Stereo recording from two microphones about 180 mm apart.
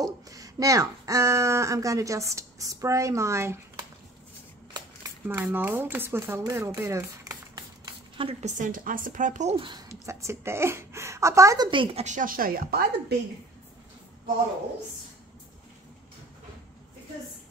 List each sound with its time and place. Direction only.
0.0 s speech: 20° right (ahead or behind)
5.3 s speech: 10° right (ahead or behind)
8.2 s a woman's voice: 35° right (ahead or behind)
9.8 s a woman's voice: 15° right (ahead or behind); by 12.9 s 55° right (ahead or behind)